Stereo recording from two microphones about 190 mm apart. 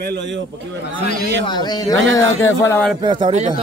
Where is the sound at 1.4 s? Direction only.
25° left (ahead or behind).